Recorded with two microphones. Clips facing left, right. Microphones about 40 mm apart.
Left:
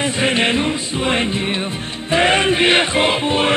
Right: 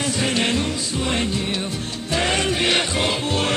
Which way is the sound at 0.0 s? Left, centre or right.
Left.